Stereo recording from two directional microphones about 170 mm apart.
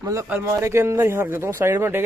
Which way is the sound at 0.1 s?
20° right (ahead or behind).